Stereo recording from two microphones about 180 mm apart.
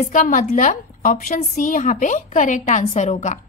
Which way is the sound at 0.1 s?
45° left (ahead or behind).